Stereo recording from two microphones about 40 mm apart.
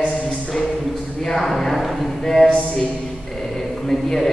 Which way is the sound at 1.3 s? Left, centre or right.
Centre.